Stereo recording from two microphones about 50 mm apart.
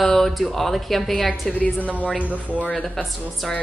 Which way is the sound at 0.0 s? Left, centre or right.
Centre.